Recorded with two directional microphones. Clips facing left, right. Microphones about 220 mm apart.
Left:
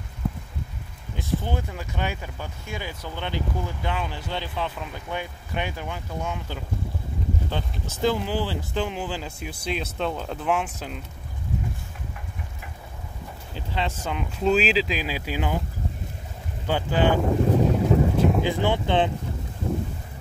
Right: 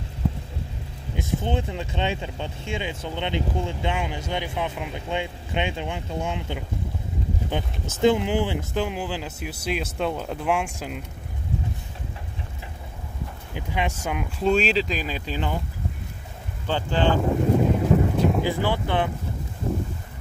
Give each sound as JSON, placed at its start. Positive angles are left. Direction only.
{"t": 1.1, "sound": "speech", "side_deg": -25}
{"t": 8.0, "sound": "speech", "side_deg": -20}
{"t": 13.6, "sound": "speech", "side_deg": -15}
{"t": 14.4, "sound": "speech", "side_deg": 5}
{"t": 16.6, "sound": "speech", "side_deg": 10}
{"t": 17.6, "sound": "wind noise", "side_deg": 0}
{"t": 18.4, "sound": "speech", "side_deg": 20}